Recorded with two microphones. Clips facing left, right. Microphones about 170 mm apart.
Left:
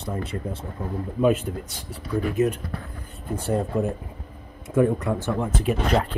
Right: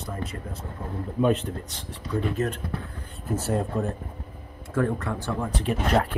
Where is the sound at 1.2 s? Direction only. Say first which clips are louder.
Left 2 dB; 10° left (ahead or behind).